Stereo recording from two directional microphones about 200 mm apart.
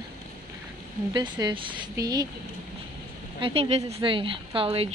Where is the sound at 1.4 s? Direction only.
25° right (ahead or behind).